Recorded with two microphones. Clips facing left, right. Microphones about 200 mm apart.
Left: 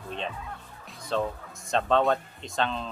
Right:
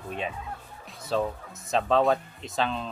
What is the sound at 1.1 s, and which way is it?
Speech, 5° right (ahead or behind).